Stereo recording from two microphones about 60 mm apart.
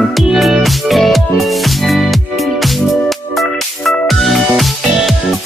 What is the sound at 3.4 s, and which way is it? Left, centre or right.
Music, centre.